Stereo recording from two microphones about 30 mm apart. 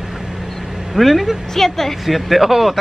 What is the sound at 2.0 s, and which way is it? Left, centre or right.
Speech, centre.